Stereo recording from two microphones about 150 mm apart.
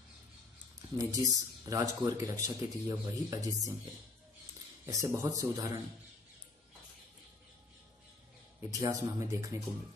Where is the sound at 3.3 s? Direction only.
20° right (ahead or behind).